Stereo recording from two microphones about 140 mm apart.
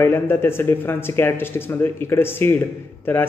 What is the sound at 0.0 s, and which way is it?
Speech, 15° left (ahead or behind).